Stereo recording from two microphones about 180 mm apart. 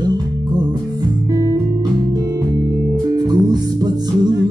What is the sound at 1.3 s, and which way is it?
Music, 20° right (ahead or behind).